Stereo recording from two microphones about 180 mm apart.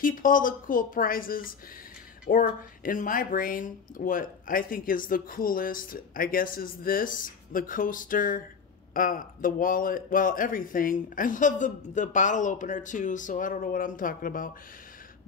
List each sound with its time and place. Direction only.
0.0 s speech: 50° left (ahead or behind)